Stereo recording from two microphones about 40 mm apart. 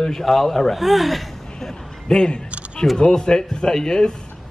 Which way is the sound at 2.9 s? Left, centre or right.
Left.